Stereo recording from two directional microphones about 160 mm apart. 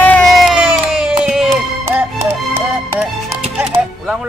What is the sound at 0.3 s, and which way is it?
Crowd, centre (ahead or behind).